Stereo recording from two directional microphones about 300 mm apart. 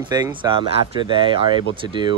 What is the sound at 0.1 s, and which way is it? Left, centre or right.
Speech, centre.